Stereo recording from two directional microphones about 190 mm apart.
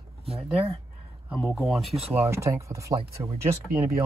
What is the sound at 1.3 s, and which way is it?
Speech, centre (ahead or behind).